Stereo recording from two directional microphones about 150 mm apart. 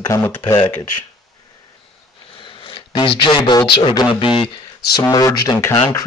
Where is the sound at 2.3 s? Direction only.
35° left (ahead or behind).